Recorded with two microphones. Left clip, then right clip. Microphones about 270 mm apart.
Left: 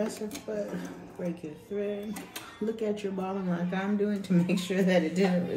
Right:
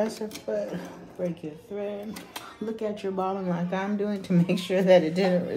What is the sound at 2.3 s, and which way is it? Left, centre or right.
Speech, centre.